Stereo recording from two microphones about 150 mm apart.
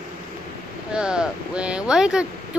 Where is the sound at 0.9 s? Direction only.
5° right (ahead or behind).